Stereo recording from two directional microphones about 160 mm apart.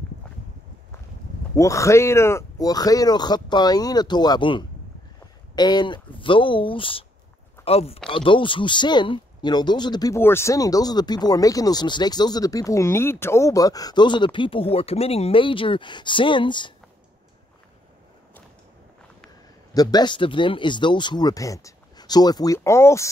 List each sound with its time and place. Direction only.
1.5 s speech: 20° left (ahead or behind)
19.7 s speech: 25° left (ahead or behind)